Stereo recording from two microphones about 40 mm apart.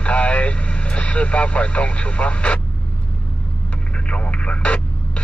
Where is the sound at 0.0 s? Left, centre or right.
Left.